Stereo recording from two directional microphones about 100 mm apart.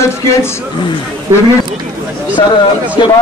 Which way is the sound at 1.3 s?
25° right (ahead or behind).